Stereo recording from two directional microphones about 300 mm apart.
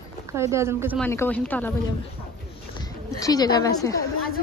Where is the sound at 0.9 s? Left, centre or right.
Centre.